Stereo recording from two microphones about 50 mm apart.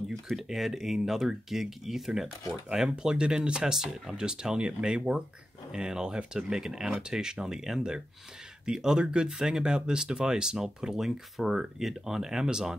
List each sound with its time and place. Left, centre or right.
0.4 s speech: centre